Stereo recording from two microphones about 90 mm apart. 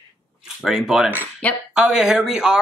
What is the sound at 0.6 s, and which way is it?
Speech, 5° right (ahead or behind).